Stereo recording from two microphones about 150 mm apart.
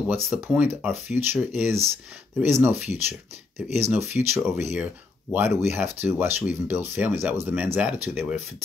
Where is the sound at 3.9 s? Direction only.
15° right (ahead or behind).